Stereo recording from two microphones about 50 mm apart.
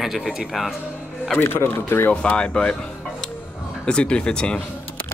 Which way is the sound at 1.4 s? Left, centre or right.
Left.